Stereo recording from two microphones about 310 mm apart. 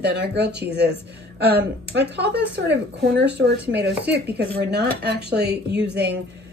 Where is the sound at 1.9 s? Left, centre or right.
Right.